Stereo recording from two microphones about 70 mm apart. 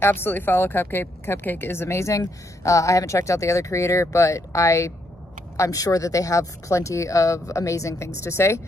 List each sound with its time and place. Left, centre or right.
0.0 s a woman's voice: left